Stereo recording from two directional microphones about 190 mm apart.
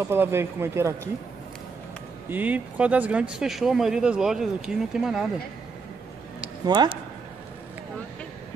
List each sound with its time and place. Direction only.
0.0 s speech: 15° right (ahead or behind)
2.2 s speech: 10° right (ahead or behind)
6.6 s speech: 25° right (ahead or behind)